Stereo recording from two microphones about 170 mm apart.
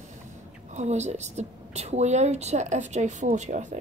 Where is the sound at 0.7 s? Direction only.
40° right (ahead or behind).